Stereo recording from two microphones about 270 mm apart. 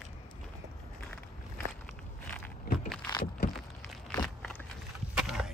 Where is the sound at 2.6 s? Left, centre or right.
Left.